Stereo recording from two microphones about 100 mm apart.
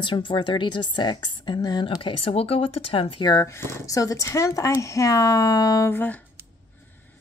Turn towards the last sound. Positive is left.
turn(degrees=20)  # may be behind; listen again after turning